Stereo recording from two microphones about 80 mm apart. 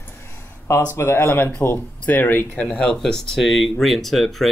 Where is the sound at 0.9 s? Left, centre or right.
Left.